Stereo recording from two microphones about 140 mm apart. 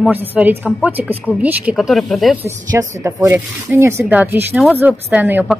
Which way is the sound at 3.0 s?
20° right (ahead or behind).